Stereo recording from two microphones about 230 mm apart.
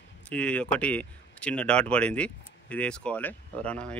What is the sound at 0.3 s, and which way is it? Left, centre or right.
Speech, centre.